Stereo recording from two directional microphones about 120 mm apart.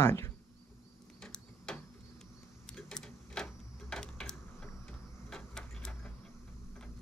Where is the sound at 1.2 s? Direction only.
5° left (ahead or behind).